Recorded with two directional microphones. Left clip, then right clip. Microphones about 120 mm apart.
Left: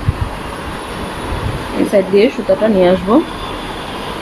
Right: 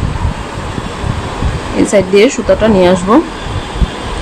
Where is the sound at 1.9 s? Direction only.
30° right (ahead or behind).